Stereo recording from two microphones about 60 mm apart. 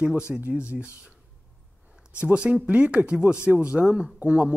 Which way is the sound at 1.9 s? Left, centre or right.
Centre.